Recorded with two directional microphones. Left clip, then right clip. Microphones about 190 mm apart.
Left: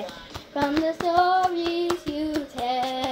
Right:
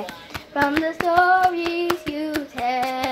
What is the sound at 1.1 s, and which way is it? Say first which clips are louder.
Child singing: right 4 dB; 25° right (ahead or behind).